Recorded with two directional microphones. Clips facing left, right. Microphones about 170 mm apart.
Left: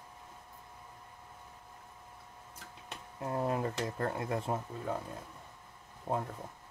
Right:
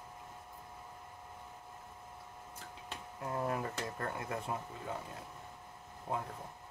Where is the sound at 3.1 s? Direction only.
25° left (ahead or behind).